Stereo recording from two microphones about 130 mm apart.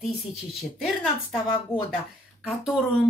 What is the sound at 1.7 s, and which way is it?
Speech, 15° left (ahead or behind).